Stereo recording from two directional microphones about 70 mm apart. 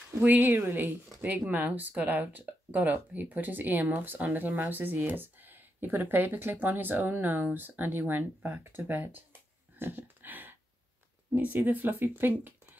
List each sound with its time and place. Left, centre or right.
0.2 s speech: right
1.2 s speech: right
9.8 s dog: right
11.3 s speech: right